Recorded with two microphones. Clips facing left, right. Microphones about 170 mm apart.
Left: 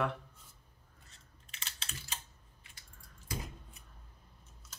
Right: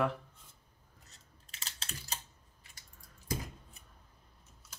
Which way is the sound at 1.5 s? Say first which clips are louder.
Right 1 dB; 40° right (ahead or behind).